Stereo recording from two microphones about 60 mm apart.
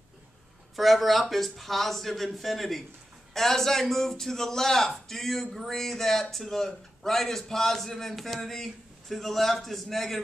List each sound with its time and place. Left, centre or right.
0.7 s a man's voice: centre